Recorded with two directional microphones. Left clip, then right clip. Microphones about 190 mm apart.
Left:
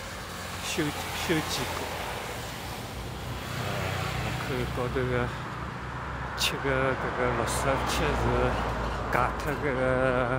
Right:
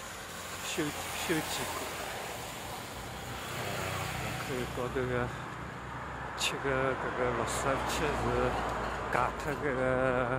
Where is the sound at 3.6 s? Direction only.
45° right (ahead or behind).